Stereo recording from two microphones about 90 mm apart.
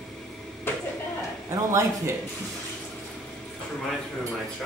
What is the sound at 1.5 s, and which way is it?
Speech, 35° right (ahead or behind).